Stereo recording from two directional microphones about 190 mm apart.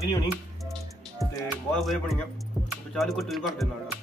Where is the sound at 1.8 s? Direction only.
Centre (ahead or behind).